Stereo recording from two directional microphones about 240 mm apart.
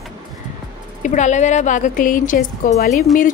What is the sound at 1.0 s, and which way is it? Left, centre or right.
Speech, left.